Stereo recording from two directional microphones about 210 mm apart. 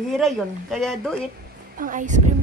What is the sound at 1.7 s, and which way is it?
Speech, 40° right (ahead or behind).